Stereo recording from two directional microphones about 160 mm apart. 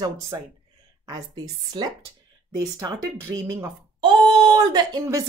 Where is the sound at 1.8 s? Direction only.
25° right (ahead or behind).